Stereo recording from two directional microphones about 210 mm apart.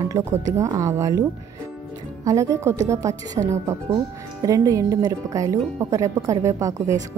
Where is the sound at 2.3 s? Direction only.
15° right (ahead or behind).